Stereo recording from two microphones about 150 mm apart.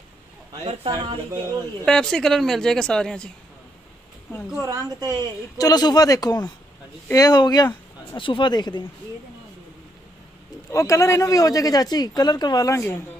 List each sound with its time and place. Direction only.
0.8 s speech: 30° right (ahead or behind)
1.9 s speech: 5° left (ahead or behind)
4.3 s a woman's voice: 15° left (ahead or behind)
4.6 s speech: 25° right (ahead or behind)
5.6 s speech: 25° left (ahead or behind)
10.7 s speech: 20° left (ahead or behind)